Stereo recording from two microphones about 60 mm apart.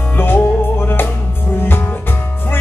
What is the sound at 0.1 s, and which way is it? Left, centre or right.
Music, left.